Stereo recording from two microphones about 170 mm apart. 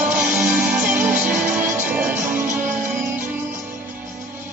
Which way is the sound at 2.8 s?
15° right (ahead or behind).